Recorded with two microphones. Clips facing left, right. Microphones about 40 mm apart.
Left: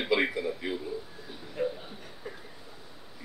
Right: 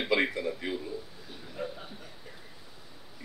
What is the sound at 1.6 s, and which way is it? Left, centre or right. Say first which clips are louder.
Chuckle: left 6 dB; centre.